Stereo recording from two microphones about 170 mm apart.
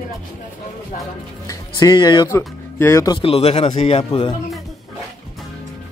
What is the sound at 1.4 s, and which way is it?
Speech, 25° left (ahead or behind).